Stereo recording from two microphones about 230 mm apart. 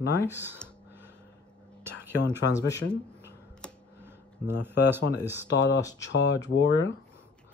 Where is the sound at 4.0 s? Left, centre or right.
Centre.